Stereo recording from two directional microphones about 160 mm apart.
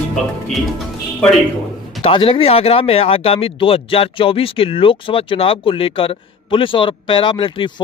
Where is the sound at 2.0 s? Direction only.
35° left (ahead or behind).